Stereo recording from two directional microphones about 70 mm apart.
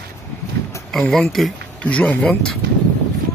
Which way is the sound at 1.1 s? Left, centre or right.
Centre.